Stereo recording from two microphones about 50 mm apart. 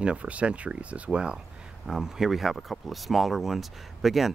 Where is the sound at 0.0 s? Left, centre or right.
Right.